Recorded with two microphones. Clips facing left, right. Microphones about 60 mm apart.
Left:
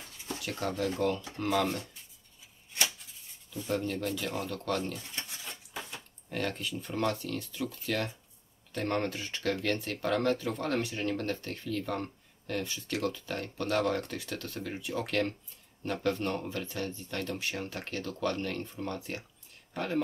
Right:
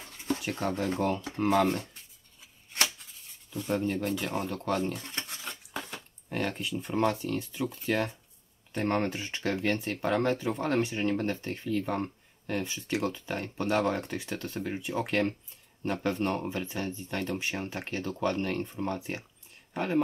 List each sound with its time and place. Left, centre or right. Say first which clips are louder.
0.9 s speech: right 1 dB; right
3.8 s speech: right 3 dB; right
4.9 s dishes: right 3 dB; right
6.2 s speech: right 2 dB; right